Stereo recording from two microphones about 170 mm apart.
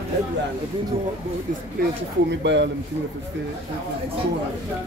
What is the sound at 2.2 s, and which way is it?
Speech, 90° right.